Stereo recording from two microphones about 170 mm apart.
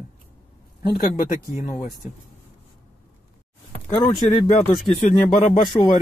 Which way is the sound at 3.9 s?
25° left (ahead or behind).